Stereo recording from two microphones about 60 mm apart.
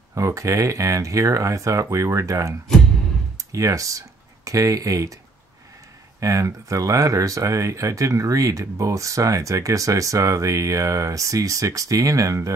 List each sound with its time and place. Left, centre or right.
0.1 s speech: right
6.1 s speech: right